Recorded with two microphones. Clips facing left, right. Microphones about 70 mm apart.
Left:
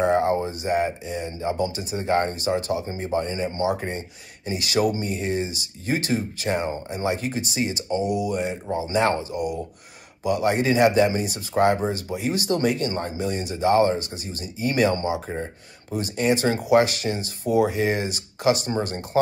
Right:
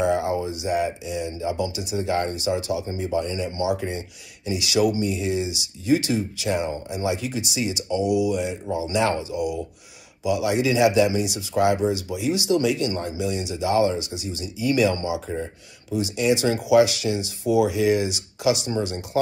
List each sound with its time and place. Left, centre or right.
0.0 s a man's voice: left